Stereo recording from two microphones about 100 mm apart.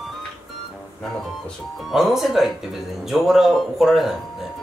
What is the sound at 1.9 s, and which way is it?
Speech, centre (ahead or behind).